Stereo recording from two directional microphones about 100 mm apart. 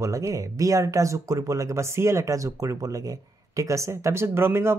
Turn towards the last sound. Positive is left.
turn(degrees=-25)  # may be behind; listen again after turning